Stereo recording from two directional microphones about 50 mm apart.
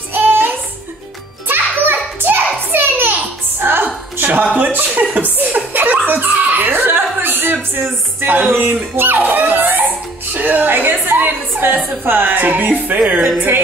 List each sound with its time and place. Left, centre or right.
0.1 s child singing: right
1.5 s a sound: right
3.2 s music: right
4.6 s chuckle: right
8.9 s a sound: right
10.3 s music: right